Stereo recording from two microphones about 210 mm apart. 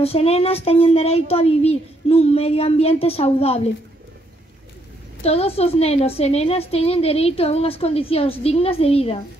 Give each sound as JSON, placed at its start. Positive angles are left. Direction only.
{"t": 0.0, "sound": "a woman's voice", "side_deg": 30}
{"t": 5.2, "sound": "a woman's voice", "side_deg": 30}